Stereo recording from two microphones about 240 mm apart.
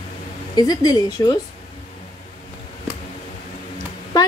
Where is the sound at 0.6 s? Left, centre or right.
Centre.